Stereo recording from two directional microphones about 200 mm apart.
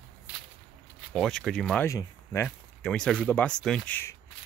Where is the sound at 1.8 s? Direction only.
15° left (ahead or behind).